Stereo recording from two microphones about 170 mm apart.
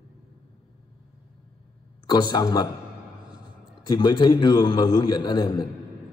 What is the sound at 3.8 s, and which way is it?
A man's voice, 25° left (ahead or behind).